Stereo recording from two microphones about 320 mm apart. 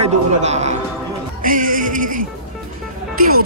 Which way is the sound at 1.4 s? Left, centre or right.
Right.